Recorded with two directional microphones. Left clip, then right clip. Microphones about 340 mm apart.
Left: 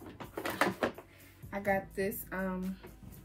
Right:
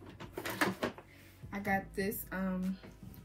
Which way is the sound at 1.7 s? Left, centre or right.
Centre.